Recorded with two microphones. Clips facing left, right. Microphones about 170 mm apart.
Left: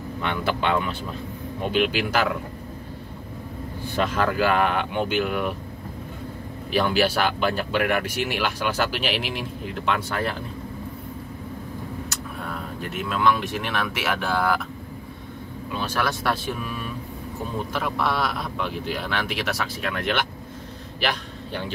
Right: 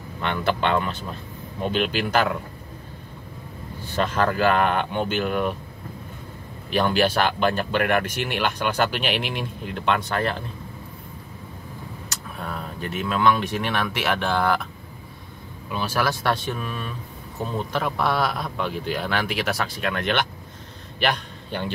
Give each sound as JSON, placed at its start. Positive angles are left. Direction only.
{"t": 0.2, "sound": "speech", "side_deg": 5}
{"t": 4.4, "sound": "speech", "side_deg": 5}
{"t": 6.7, "sound": "speech", "side_deg": 5}
{"t": 12.1, "sound": "speech", "side_deg": 0}
{"t": 15.8, "sound": "a man's voice", "side_deg": -5}